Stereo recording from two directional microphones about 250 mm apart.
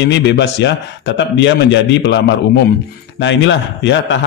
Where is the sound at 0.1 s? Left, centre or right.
Left.